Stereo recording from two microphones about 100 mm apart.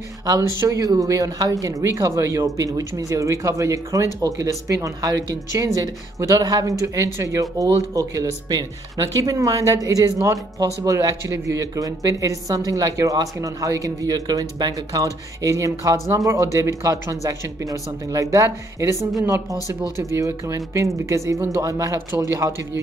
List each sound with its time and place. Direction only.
0.2 s speech: 35° right (ahead or behind)